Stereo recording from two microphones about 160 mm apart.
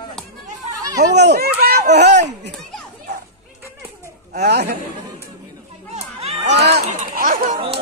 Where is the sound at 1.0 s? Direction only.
90° right.